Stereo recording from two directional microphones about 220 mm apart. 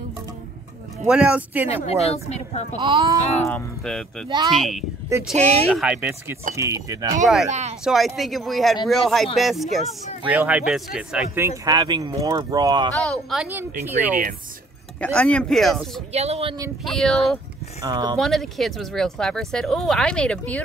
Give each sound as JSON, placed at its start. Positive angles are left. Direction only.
{"t": 1.0, "sound": "speech", "side_deg": -5}
{"t": 1.9, "sound": "speech", "side_deg": 30}
{"t": 2.8, "sound": "speech", "side_deg": -20}
{"t": 3.4, "sound": "speech", "side_deg": 5}
{"t": 7.4, "sound": "speech", "side_deg": -30}
{"t": 7.8, "sound": "speech", "side_deg": 0}
{"t": 11.3, "sound": "speech", "side_deg": -15}
{"t": 13.0, "sound": "speech", "side_deg": 0}
{"t": 15.0, "sound": "speech", "side_deg": 5}
{"t": 16.1, "sound": "speech", "side_deg": -30}
{"t": 16.8, "sound": "speech", "side_deg": 0}
{"t": 17.8, "sound": "speech", "side_deg": -20}
{"t": 18.2, "sound": "speech", "side_deg": 0}